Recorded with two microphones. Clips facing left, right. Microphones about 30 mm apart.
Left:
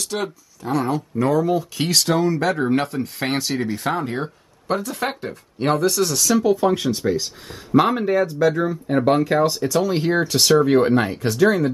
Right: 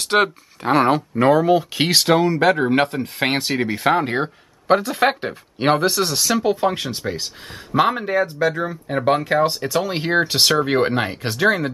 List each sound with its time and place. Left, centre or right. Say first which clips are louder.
0.0 s speech: right 8 dB; right
7.7 s speech: left 1 dB; centre; by 11.7 s right